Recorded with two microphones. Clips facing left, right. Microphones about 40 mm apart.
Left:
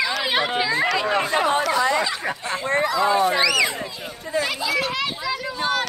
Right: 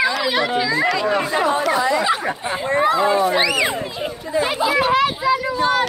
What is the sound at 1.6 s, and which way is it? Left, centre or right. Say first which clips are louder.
A child's voice: right 2 dB; right.